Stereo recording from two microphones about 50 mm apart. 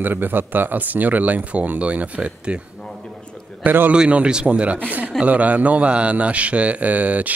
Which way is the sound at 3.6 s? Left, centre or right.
Right.